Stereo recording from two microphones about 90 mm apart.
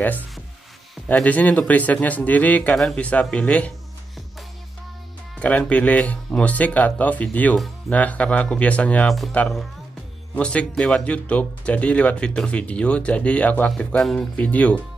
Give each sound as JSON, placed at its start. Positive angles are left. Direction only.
{"t": 1.0, "sound": "speech", "side_deg": 15}
{"t": 2.7, "sound": "speech", "side_deg": 5}
{"t": 3.0, "sound": "speech", "side_deg": 15}
{"t": 5.4, "sound": "speech", "side_deg": 15}